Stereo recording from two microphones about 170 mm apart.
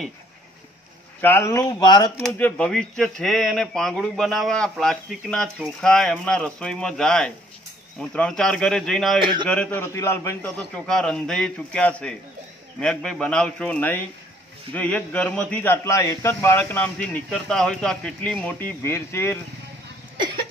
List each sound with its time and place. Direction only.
1.2 s speech: 15° left (ahead or behind)
2.3 s speech: 10° left (ahead or behind)
9.2 s speech: 25° right (ahead or behind)
9.5 s a man's voice: 10° left (ahead or behind)